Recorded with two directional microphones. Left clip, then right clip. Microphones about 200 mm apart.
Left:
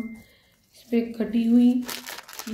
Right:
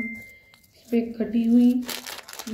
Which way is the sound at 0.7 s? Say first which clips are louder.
Even; 10° left (ahead or behind).